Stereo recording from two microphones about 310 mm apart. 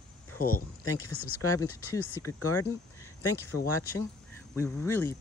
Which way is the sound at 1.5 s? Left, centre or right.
Centre.